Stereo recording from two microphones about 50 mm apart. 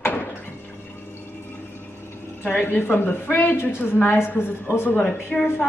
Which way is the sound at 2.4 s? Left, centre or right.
Left.